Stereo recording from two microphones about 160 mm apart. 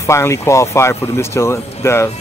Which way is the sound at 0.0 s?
15° left (ahead or behind).